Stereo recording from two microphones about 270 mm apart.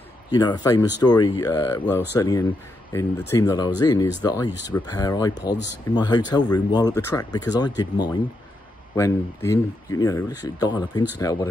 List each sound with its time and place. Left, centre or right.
0.3 s speech: centre
1.9 s speech: centre
2.1 s speech: centre